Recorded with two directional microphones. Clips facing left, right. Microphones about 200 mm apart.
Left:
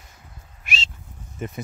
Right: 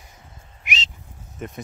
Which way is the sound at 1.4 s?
Centre (ahead or behind).